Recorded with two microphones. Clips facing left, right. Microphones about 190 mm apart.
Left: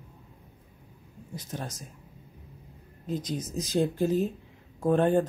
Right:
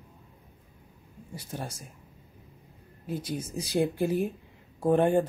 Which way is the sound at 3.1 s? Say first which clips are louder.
Left 1 dB; 10° right (ahead or behind).